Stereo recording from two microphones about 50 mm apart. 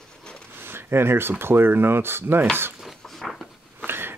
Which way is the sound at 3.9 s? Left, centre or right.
Right.